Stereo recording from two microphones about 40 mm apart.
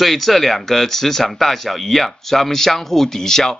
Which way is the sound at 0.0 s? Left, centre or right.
Centre.